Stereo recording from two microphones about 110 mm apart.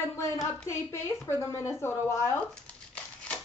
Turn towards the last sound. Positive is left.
turn(degrees=10)  # may be behind; listen again after turning